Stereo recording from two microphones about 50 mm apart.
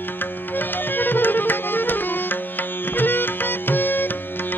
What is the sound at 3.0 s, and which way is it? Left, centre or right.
Music, left.